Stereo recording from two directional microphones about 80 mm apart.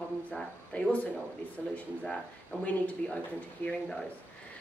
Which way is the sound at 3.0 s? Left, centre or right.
Centre.